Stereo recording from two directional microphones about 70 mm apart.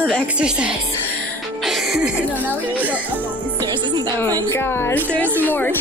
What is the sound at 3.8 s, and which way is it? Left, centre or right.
Speech, right.